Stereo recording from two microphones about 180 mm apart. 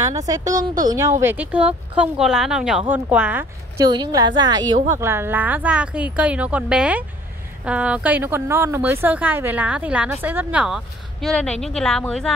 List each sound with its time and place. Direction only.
0.0 s a woman's voice: 20° right (ahead or behind)
3.8 s a woman's voice: 20° right (ahead or behind); by 12.3 s 5° left (ahead or behind)